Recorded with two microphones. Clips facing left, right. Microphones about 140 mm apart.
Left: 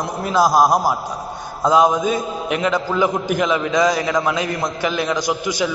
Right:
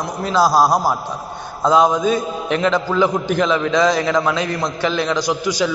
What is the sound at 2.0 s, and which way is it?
A man's voice, 10° left (ahead or behind).